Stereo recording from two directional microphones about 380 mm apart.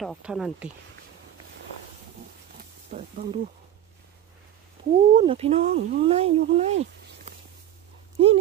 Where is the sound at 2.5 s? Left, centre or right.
Centre.